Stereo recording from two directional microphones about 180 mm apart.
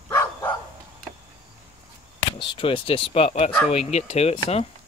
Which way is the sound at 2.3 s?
30° left (ahead or behind).